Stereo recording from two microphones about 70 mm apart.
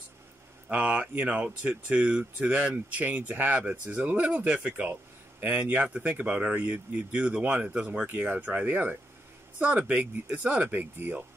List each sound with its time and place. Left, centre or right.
0.7 s speech: right